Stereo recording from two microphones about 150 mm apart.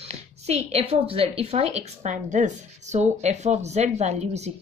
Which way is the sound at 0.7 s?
40° right (ahead or behind).